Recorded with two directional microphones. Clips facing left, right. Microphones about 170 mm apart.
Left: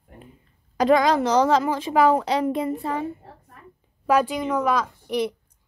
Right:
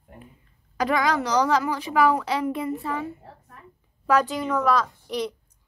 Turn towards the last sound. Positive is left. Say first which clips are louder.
# even
turn(degrees=10)  # may be behind; listen again after turning